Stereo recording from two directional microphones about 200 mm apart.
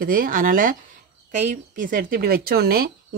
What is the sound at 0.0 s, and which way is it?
Speech, 45° right (ahead or behind).